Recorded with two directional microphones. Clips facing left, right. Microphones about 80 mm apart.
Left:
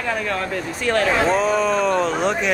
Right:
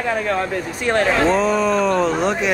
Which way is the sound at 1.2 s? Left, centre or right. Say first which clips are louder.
Right 1 dB; centre.